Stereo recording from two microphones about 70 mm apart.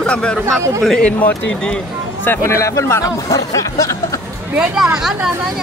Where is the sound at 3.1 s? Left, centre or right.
Left.